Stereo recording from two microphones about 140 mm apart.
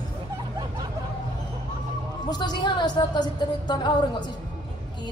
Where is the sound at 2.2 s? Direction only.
30° left (ahead or behind).